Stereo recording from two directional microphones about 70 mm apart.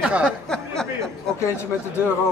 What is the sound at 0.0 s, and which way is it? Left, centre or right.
Speech, centre.